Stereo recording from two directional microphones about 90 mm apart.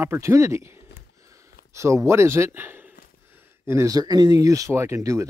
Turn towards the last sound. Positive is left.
turn(degrees=-35)  # may be behind; listen again after turning